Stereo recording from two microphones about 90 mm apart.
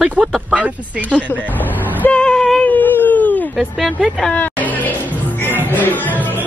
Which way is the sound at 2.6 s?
20° left (ahead or behind).